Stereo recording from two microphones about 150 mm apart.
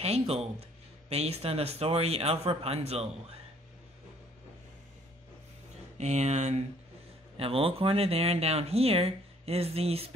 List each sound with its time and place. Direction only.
0.4 s speech: 45° right (ahead or behind)
5.9 s speech: 50° right (ahead or behind)